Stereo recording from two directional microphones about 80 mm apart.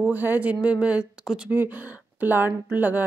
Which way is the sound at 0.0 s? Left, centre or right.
Right.